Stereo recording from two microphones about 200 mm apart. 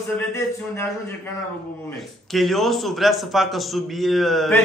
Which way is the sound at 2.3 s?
Centre (ahead or behind).